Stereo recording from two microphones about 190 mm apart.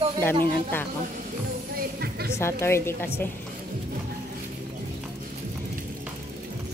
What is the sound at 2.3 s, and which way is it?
Speech, 15° left (ahead or behind).